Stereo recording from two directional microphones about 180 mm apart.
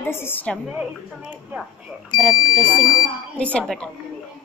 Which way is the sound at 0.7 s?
5° right (ahead or behind).